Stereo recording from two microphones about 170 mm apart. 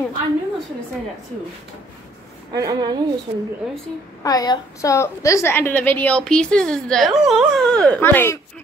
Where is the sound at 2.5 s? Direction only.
20° right (ahead or behind).